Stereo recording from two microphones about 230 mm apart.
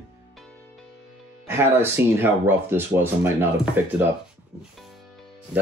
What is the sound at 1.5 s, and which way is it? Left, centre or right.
Speech, centre.